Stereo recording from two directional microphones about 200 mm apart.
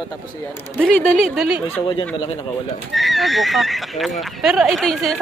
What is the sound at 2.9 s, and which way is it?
Speech, centre (ahead or behind).